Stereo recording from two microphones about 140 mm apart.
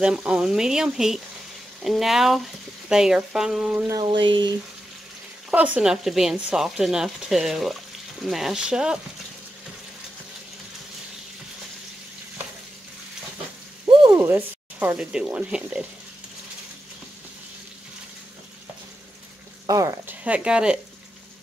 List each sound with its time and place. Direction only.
0.0 s speech: 5° right (ahead or behind)
4.0 s speech: 35° right (ahead or behind)
5.8 s speech: 5° right (ahead or behind)
14.1 s speech: 15° right (ahead or behind)
19.7 s speech: 20° right (ahead or behind)
20.2 s speech: 5° right (ahead or behind)